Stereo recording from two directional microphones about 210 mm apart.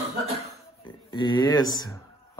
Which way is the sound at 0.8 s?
20° left (ahead or behind).